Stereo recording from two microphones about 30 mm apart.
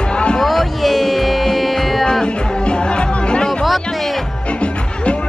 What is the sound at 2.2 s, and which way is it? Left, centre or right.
Music, left.